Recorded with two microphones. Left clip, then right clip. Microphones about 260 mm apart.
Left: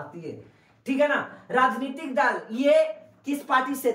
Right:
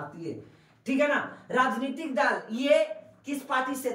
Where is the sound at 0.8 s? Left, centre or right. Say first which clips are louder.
Left 3 dB; centre.